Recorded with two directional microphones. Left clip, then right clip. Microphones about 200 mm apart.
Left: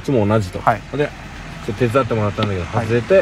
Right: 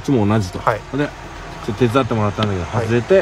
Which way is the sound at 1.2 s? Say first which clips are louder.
Right 2 dB; 40° right (ahead or behind).